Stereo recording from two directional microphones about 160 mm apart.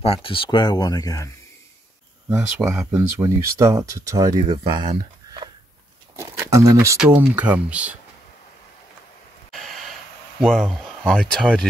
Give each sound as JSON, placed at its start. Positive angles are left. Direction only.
{"t": 0.0, "sound": "speech", "side_deg": 35}
{"t": 2.2, "sound": "speech", "side_deg": -15}
{"t": 3.2, "sound": "speech", "side_deg": -20}
{"t": 6.1, "sound": "a sound", "side_deg": -20}
{"t": 7.2, "sound": "speech", "side_deg": -10}
{"t": 10.4, "sound": "speech", "side_deg": 5}